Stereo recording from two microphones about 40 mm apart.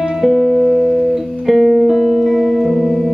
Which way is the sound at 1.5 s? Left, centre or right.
Centre.